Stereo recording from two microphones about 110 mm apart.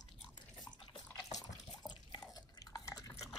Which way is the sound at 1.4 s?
40° left (ahead or behind).